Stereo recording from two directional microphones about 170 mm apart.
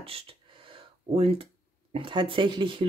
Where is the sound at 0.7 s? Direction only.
35° right (ahead or behind).